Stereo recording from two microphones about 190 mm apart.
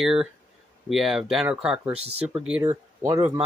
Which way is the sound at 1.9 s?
30° right (ahead or behind).